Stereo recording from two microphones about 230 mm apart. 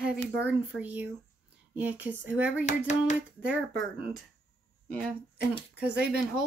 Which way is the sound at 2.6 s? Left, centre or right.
Left.